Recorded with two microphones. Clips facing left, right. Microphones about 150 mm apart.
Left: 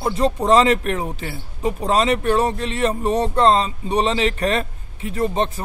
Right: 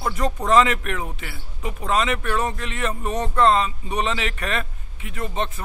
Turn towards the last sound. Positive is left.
turn(degrees=35)  # may be behind; listen again after turning